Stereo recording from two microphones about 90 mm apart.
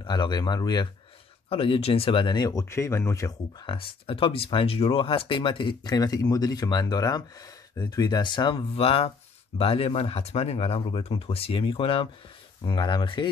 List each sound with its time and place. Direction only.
0.0 s speech: 55° left (ahead or behind)
1.5 s speech: 90° left; by 2.6 s 50° left (ahead or behind)
2.7 s speech: 30° left (ahead or behind)
3.6 s speech: 85° left; by 5.8 s 70° left (ahead or behind)
5.9 s speech: 45° left (ahead or behind); by 12.1 s 80° left
12.6 s speech: 60° left (ahead or behind)